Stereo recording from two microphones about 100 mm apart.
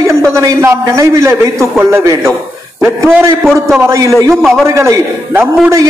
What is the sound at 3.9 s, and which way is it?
A man's voice, 30° right (ahead or behind).